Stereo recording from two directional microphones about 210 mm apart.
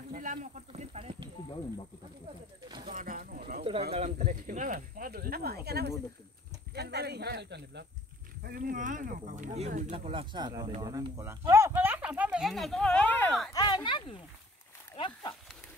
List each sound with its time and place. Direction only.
0.1 s a sound: 35° right (ahead or behind)
2.9 s speech: 40° right (ahead or behind)
3.9 s speech: 30° right (ahead or behind); by 13.5 s 5° left (ahead or behind)
13.5 s speech: 20° left (ahead or behind)